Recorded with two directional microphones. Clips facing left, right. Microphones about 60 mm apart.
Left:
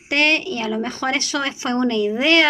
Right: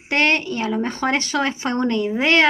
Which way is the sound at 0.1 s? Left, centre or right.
Right.